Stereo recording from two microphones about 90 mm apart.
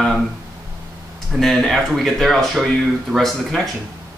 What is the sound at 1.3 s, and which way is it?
Speech, 5° left (ahead or behind).